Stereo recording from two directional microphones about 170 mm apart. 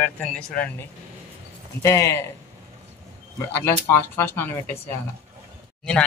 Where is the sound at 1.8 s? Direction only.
15° left (ahead or behind).